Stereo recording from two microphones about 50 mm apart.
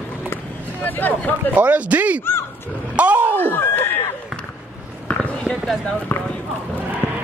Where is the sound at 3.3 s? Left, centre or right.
Left.